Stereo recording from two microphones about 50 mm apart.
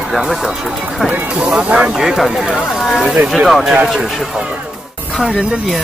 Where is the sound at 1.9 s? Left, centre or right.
Centre.